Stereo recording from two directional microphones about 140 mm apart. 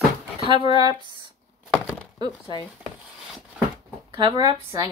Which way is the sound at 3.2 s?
5° right (ahead or behind).